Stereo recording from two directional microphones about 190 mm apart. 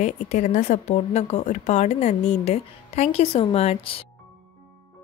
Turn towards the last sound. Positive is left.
turn(degrees=30)  # may be behind; listen again after turning